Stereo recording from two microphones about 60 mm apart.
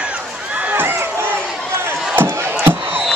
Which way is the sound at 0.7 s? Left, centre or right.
Right.